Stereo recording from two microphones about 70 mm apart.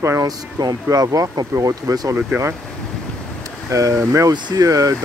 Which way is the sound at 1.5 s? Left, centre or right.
Right.